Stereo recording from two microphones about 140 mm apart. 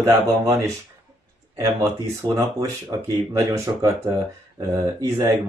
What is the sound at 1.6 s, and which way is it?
Speech, 25° right (ahead or behind).